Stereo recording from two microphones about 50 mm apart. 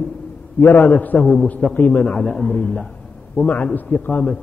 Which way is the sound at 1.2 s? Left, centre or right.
Centre.